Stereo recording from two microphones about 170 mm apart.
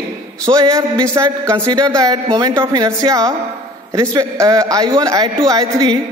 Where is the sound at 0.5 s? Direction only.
20° right (ahead or behind).